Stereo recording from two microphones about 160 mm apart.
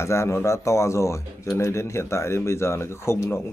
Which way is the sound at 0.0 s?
15° left (ahead or behind).